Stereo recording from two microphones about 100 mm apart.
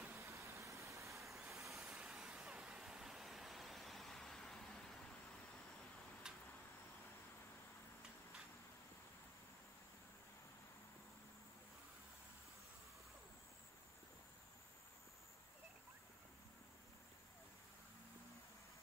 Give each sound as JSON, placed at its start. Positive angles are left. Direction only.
{"t": 0.2, "sound": "vehicle", "side_deg": -30}
{"t": 1.8, "sound": "vehicle", "side_deg": -10}
{"t": 6.2, "sound": "a sound", "side_deg": -5}